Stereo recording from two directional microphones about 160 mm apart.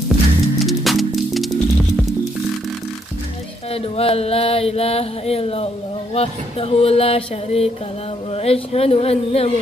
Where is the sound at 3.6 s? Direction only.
40° left (ahead or behind).